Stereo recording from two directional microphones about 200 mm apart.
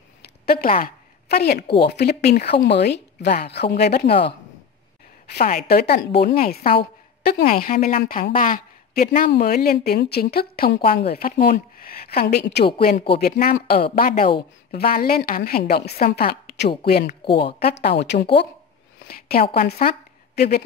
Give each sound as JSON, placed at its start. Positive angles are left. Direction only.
{"t": 0.5, "sound": "a woman's voice", "side_deg": 45}
{"t": 5.3, "sound": "a woman's voice", "side_deg": 45}
{"t": 17.2, "sound": "speech", "side_deg": 25}
{"t": 17.7, "sound": "speech", "side_deg": 60}
{"t": 19.0, "sound": "a woman's voice", "side_deg": 50}